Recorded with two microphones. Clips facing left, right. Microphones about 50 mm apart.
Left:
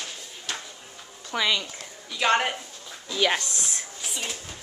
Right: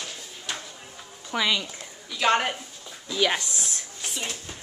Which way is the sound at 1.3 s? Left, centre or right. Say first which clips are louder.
Even; centre.